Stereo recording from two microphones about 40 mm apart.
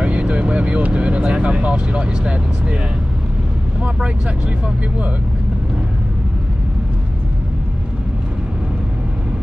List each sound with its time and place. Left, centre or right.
0.0 s speech: right